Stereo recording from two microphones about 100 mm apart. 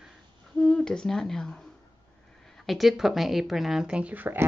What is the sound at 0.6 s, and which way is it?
Speech, 5° left (ahead or behind).